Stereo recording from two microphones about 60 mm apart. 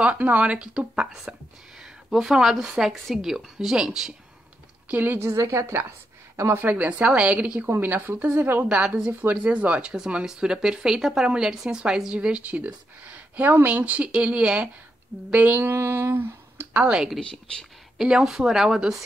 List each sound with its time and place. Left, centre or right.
0.0 s a woman's voice: right
2.0 s a woman's voice: centre
4.8 s a woman's voice: right
5.2 s a woman's voice: right
6.6 s a woman's voice: right
7.6 s a woman's voice: right
8.6 s a woman's voice: centre
9.9 s a woman's voice: centre; by 15.6 s right
15.6 s a sound: right
16.7 s a woman's voice: centre
17.2 s speech: centre
17.9 s a woman's voice: centre